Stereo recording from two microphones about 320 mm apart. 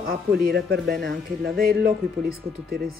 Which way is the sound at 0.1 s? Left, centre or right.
Right.